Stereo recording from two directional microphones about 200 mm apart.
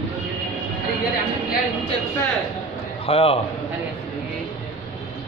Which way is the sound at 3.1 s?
30° left (ahead or behind).